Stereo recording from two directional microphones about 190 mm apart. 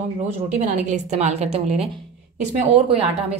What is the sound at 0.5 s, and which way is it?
A woman's voice, 40° right (ahead or behind).